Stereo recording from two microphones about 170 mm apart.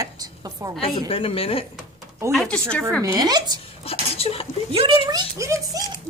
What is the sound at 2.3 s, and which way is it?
Speech, 5° left (ahead or behind).